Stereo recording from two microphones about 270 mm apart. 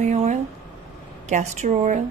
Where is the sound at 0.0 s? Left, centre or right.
Right.